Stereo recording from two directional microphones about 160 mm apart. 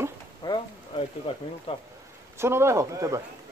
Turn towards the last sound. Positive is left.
turn(degrees=-20)  # may be behind; listen again after turning